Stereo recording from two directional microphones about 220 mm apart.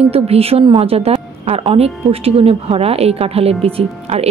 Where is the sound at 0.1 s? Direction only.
25° right (ahead or behind).